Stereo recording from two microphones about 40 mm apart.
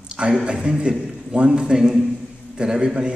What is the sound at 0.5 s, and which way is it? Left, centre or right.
A man's voice, right.